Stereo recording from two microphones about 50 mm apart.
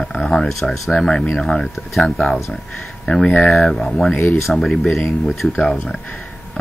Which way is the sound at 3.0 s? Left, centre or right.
Centre.